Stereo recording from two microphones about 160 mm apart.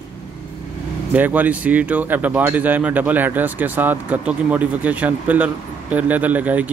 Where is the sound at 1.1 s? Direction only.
10° right (ahead or behind).